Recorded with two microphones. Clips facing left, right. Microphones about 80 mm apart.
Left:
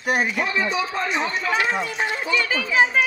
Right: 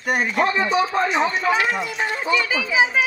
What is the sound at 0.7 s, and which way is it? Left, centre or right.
Speech, right.